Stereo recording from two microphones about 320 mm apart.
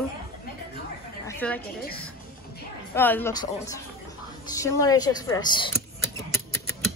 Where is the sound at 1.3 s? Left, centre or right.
Centre.